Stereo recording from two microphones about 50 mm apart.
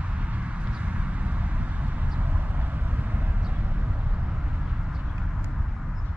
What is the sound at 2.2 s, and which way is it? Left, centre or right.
Vehicle, right.